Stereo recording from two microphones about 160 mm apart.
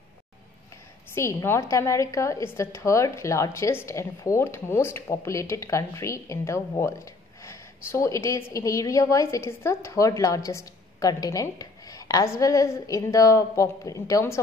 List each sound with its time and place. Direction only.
1.1 s a woman's voice: 15° left (ahead or behind)